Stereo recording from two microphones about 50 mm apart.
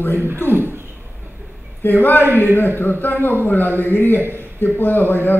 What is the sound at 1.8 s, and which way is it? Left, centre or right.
A man's voice, left.